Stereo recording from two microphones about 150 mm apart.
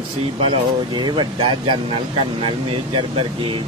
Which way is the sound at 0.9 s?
30° right (ahead or behind).